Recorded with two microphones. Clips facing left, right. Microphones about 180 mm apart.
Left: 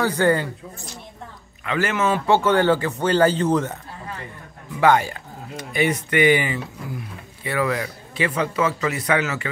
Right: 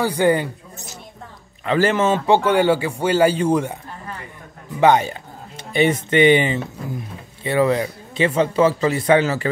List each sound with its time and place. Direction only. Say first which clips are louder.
0.0 s a man's voice: right 2 dB; 15° right (ahead or behind)
1.6 s a man's voice: right 5 dB; 30° right (ahead or behind); by 3.7 s 10° right (ahead or behind)
4.7 s a man's voice: right 2 dB; 20° right (ahead or behind)